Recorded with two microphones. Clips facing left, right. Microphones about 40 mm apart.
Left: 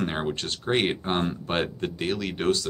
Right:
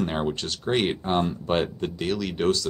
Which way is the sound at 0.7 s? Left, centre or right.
Centre.